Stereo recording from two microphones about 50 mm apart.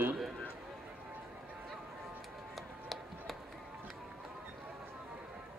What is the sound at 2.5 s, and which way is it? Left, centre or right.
Music, centre.